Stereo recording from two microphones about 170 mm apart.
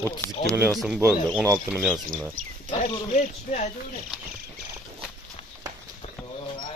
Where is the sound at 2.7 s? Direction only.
45° left (ahead or behind).